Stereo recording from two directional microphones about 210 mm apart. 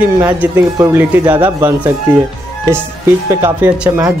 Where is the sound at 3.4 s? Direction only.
5° right (ahead or behind).